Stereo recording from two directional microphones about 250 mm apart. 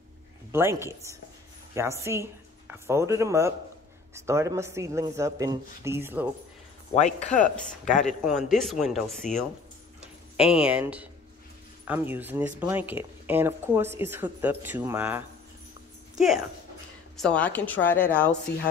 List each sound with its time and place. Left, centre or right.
0.5 s speech: centre
6.9 s speech: left
8.4 s speech: centre
10.3 s a woman's voice: centre